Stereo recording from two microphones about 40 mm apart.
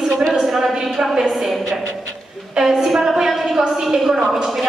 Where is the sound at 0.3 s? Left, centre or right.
Centre.